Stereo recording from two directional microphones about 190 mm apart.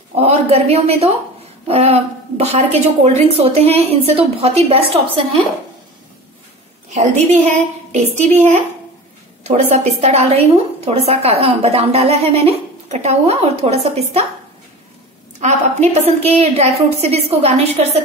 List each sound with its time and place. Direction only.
0.1 s a woman's voice: 35° right (ahead or behind)
6.9 s a woman's voice: 40° right (ahead or behind)
15.4 s a woman's voice: 35° right (ahead or behind)